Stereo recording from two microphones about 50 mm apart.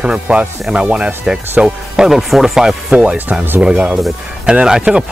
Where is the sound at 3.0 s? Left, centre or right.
Right.